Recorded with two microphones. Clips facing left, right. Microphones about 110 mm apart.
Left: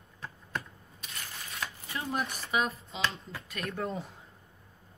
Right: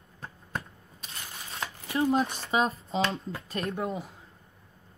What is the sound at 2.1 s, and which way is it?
Speech, 25° right (ahead or behind).